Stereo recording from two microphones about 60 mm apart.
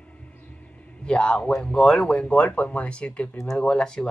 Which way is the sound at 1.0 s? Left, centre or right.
Centre.